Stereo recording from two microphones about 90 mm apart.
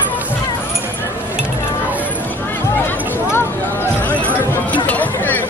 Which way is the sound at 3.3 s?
25° left (ahead or behind).